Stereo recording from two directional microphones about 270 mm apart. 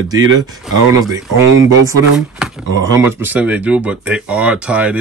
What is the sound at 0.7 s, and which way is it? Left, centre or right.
Speech, centre.